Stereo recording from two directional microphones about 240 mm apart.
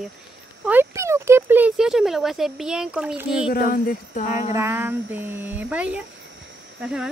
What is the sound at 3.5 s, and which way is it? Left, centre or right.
Speech, left.